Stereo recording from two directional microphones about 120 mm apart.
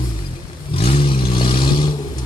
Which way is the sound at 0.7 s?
55° left (ahead or behind).